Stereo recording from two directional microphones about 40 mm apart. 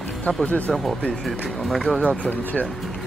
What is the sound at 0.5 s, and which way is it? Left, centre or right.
Speech, left.